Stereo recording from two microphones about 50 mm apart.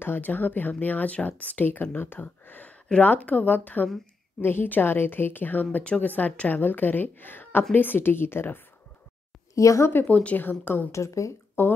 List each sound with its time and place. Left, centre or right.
0.0 s speech: left
2.1 s a sound: left
3.0 s speech: left
4.4 s a woman's voice: left
9.6 s speech: left
10.0 s speech: left
10.9 s speech: left
11.6 s a woman's voice: left